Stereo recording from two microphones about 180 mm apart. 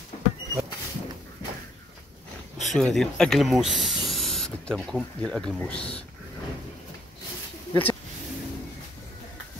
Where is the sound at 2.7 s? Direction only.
Centre (ahead or behind).